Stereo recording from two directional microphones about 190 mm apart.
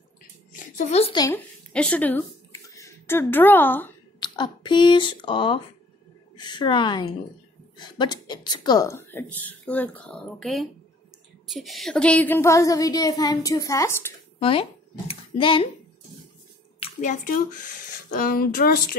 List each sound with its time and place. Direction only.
0.5 s a sound: 40° left (ahead or behind)
1.1 s speech: 20° left (ahead or behind)
1.7 s speech: 5° left (ahead or behind)
4.2 s a woman's voice: 25° left (ahead or behind)
14.4 s speech: 30° left (ahead or behind)
16.8 s a woman's voice: 40° left (ahead or behind)